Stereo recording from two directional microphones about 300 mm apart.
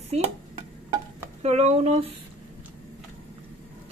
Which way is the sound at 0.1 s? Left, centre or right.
Right.